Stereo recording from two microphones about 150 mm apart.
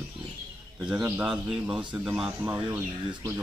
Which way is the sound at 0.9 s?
15° right (ahead or behind).